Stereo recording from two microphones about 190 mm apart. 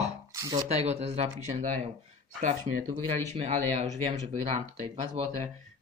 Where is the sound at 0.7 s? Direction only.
35° right (ahead or behind).